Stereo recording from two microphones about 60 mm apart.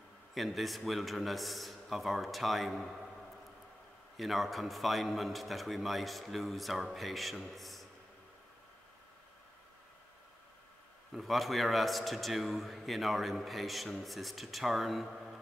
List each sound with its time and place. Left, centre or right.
0.3 s a man's voice: centre
4.2 s a man's voice: centre
11.1 s a man's voice: centre